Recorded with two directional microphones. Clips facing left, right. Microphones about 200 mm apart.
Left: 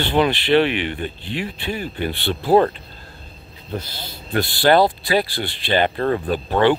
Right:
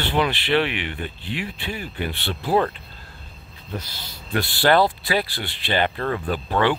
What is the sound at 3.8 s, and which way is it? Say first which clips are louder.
Speech: left 4 dB; 25° left (ahead or behind).